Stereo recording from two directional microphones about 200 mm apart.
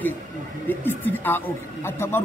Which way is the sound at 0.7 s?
10° left (ahead or behind).